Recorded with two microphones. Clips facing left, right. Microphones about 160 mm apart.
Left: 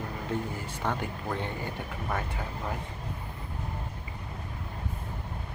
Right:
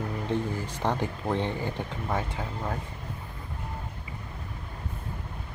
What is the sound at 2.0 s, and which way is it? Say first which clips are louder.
Speech: right 2 dB; 20° right (ahead or behind).